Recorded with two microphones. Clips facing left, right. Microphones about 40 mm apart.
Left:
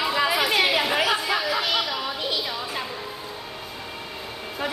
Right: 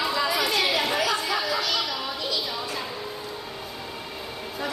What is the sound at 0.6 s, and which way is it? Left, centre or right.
Speech, centre.